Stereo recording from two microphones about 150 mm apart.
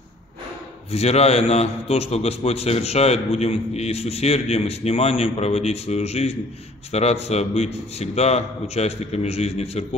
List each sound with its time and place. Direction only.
0.9 s a man's voice: 45° left (ahead or behind)